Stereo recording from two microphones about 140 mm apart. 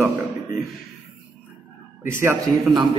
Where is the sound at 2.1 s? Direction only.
15° right (ahead or behind).